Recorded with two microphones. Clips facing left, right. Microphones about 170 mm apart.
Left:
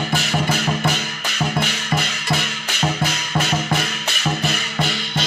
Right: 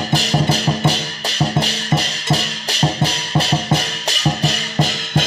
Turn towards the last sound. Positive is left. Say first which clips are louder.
# right 4 dB
turn(degrees=-35)  # may be behind; listen again after turning